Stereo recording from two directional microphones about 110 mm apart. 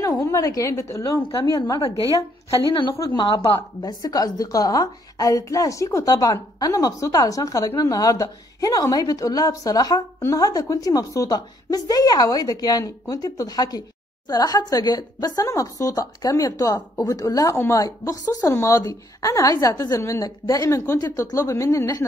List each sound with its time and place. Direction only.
0.0 s a woman's voice: 30° left (ahead or behind)
3.2 s a woman's voice: 45° left (ahead or behind); by 22.0 s 30° left (ahead or behind)